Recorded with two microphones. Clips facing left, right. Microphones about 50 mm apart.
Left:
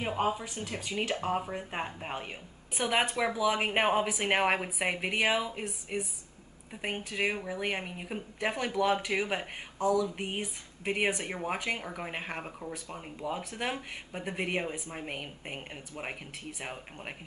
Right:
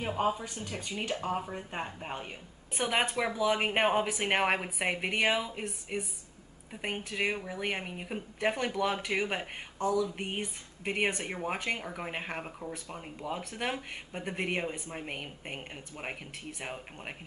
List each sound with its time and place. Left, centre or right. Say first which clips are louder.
0.2 s speech: right 1 dB; centre
2.7 s speech: left 1 dB; centre